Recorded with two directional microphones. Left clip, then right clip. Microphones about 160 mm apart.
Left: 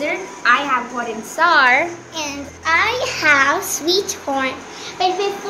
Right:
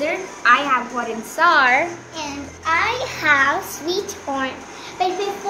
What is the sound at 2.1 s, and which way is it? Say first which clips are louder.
Child singing: left 3 dB; 80° left.